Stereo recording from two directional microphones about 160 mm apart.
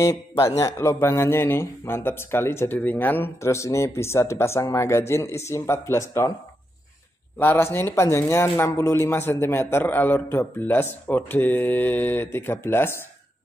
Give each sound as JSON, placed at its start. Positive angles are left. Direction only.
{"t": 0.4, "sound": "a man's voice", "side_deg": 20}
{"t": 7.3, "sound": "speech", "side_deg": 10}